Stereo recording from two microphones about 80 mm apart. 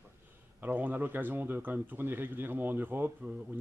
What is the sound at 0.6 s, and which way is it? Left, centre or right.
Speech, right.